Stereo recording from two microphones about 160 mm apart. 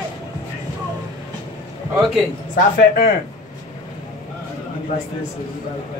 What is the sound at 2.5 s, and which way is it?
Speech, 65° left (ahead or behind).